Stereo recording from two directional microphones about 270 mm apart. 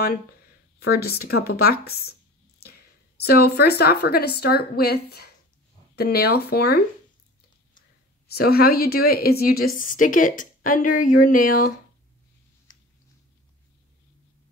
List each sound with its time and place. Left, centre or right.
0.7 s speech: left
3.2 s speech: left
8.3 s a woman's voice: left